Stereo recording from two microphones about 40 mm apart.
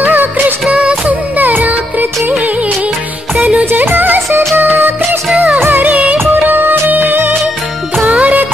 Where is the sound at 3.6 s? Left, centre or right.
Right.